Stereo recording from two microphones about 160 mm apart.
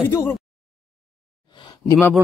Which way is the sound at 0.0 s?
15° left (ahead or behind).